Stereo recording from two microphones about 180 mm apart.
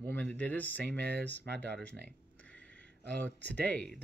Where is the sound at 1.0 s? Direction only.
65° right (ahead or behind).